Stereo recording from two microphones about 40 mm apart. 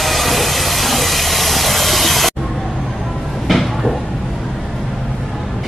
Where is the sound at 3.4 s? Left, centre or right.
Centre.